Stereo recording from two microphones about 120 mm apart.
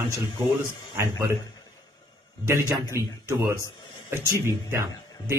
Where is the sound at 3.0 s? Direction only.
20° right (ahead or behind).